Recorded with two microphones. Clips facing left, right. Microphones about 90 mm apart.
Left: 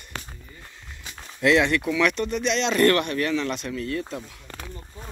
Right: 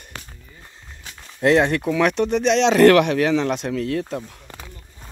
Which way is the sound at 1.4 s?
50° right (ahead or behind).